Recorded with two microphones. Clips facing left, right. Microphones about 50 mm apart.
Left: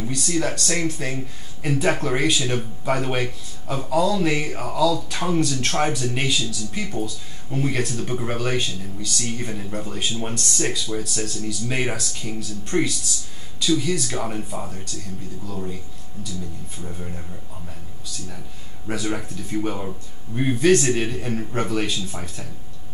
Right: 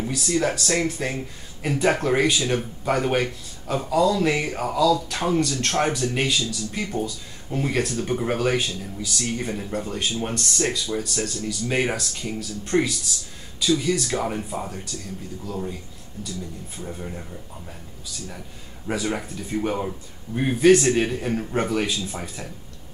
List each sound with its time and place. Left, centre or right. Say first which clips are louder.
0.0 s speech: right 1 dB; centre
18.9 s speech: even; centre